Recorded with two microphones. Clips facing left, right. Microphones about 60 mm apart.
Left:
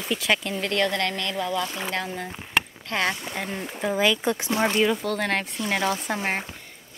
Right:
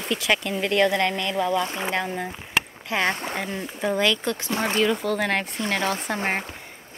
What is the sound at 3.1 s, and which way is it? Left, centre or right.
Speech, right.